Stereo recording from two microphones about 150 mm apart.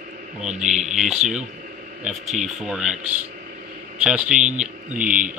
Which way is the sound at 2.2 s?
50° right (ahead or behind).